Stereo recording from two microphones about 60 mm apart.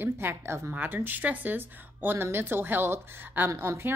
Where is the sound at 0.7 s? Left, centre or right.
Right.